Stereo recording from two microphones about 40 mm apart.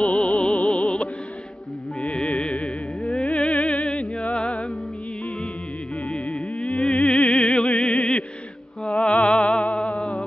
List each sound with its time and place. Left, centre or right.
0.0 s music: left
6.1 s music: left